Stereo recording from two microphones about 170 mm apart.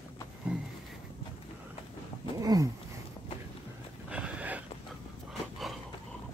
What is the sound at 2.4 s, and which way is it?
Dog, 20° right (ahead or behind).